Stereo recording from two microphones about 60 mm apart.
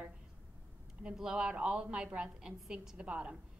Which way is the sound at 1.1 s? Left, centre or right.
Centre.